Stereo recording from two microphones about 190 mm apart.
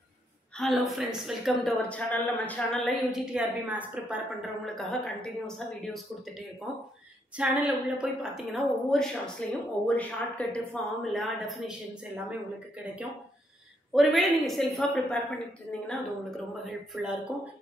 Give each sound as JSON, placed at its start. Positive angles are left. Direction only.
{"t": 0.6, "sound": "a woman's voice", "side_deg": 0}
{"t": 7.6, "sound": "a woman's voice", "side_deg": -5}